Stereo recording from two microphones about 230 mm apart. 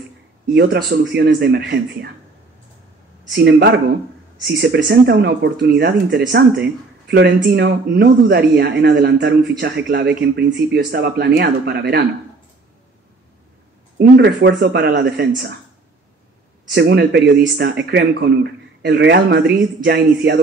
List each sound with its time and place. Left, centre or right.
0.5 s speech: right
3.3 s speech: right
13.9 s speech: right
16.7 s speech: right